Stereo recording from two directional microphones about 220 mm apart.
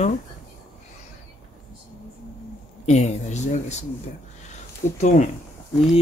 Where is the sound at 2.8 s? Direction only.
30° left (ahead or behind).